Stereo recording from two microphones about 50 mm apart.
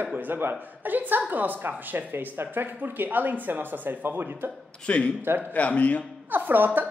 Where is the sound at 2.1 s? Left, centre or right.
Right.